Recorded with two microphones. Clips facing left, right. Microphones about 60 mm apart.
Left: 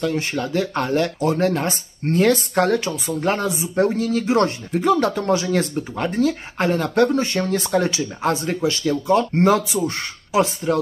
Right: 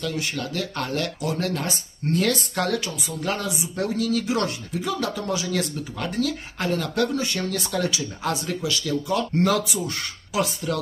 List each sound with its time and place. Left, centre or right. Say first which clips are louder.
0.0 s speech: left 6 dB; left